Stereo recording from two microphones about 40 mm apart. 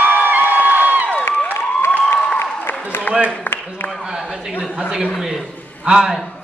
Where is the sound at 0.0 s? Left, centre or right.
Right.